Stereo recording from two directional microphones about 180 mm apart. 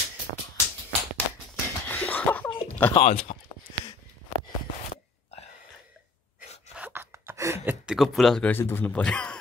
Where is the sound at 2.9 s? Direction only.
35° left (ahead or behind).